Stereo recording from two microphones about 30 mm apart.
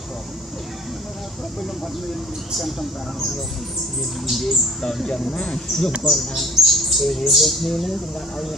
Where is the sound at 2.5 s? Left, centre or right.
Centre.